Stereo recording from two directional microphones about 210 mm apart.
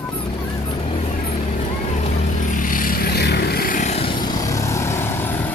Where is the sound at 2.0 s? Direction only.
35° left (ahead or behind); by 5.5 s 10° left (ahead or behind).